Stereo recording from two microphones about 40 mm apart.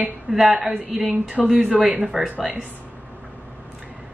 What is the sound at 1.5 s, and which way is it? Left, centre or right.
Speech, right.